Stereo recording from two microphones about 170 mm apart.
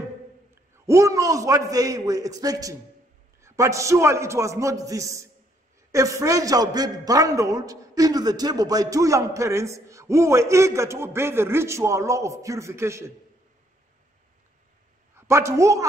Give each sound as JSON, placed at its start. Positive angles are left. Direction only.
{"t": 0.8, "sound": "a man's voice", "side_deg": -20}
{"t": 15.1, "sound": "a woman's voice", "side_deg": -15}